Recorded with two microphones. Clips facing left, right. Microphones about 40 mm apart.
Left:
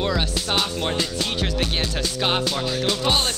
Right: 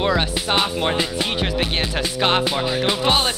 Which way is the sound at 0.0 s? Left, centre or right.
Right.